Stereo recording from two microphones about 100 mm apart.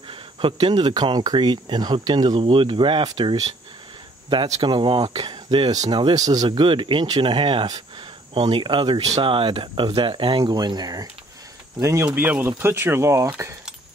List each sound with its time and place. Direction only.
0.1 s speech: 60° right (ahead or behind)
5.7 s speech: 40° right (ahead or behind)
6.5 s speech: 55° right (ahead or behind); by 11.1 s 40° right (ahead or behind)
11.8 s speech: 30° right (ahead or behind)
12.2 s speech: 20° right (ahead or behind)